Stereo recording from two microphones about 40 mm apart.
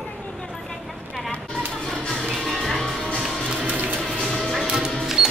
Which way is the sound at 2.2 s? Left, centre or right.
Centre.